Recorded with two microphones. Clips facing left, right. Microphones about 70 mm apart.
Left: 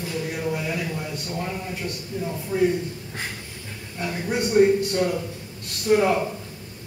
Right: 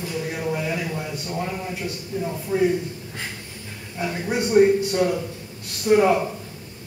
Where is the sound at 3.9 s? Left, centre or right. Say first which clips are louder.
Right 1 dB; centre.